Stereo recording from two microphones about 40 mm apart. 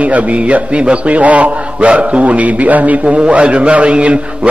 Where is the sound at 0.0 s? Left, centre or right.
Right.